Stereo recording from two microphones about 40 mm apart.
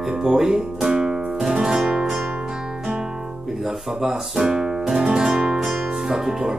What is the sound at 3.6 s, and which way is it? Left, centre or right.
Speech, centre.